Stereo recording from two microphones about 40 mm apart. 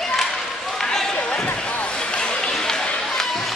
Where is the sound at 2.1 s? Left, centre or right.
Left.